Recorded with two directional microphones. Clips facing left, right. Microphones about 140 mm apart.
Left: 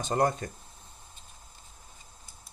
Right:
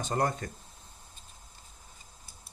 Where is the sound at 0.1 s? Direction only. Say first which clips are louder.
Left 4 dB; 20° left (ahead or behind).